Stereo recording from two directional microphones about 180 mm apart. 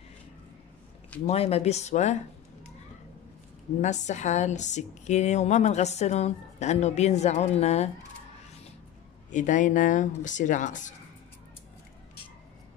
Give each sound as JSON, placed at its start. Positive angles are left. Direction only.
{"t": 1.2, "sound": "a woman's voice", "side_deg": 35}
{"t": 3.8, "sound": "a woman's voice", "side_deg": 40}
{"t": 9.3, "sound": "speech", "side_deg": 45}